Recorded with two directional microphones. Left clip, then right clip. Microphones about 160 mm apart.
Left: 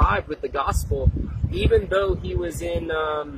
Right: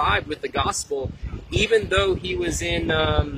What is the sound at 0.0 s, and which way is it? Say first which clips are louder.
Speech: right 1 dB; 5° right (ahead or behind).